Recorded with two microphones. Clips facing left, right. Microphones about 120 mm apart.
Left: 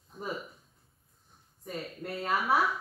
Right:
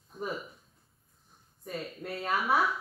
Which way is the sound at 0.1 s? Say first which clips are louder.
Right 1 dB; centre (ahead or behind).